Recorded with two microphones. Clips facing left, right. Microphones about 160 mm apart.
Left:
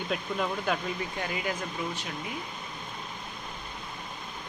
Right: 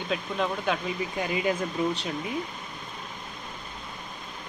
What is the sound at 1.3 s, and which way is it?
Speech, 20° right (ahead or behind).